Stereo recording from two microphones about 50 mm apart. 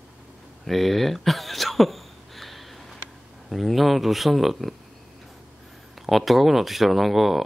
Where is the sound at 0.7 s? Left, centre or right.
Centre.